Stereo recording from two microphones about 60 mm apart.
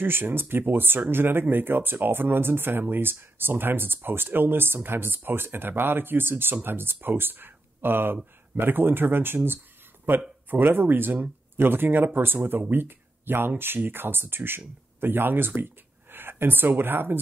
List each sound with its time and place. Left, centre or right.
0.0 s speech: right
10.7 s speech: right